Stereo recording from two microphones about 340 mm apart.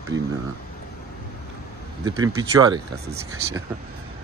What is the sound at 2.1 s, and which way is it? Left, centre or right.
Speech, centre.